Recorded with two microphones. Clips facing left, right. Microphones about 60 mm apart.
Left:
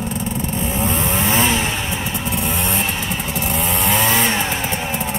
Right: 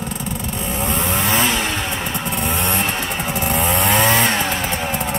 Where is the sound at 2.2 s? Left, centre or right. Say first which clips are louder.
Right 1 dB; centre.